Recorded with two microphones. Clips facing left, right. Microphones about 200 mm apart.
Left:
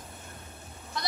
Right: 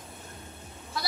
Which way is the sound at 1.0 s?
5° right (ahead or behind).